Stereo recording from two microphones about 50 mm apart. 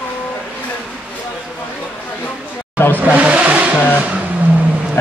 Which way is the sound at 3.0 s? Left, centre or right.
Right.